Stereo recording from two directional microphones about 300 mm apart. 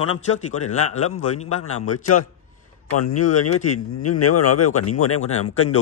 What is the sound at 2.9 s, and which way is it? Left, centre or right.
Speech, left.